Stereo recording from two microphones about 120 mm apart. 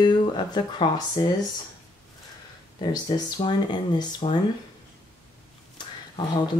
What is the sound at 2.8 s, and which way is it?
Speech, 35° left (ahead or behind).